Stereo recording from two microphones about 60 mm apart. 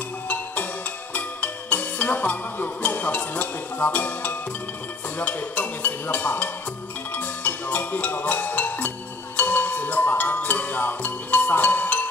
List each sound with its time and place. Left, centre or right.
1.1 s music: left
5.2 s a sound: left
7.2 s music: left